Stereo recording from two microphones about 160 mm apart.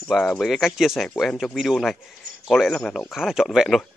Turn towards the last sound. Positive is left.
turn(degrees=0)  # may be behind; listen again after turning